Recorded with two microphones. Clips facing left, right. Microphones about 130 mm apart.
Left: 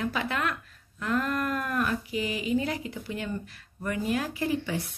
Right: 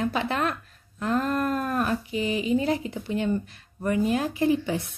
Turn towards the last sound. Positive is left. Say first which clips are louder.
# right 6 dB
turn(degrees=-25)  # may be behind; listen again after turning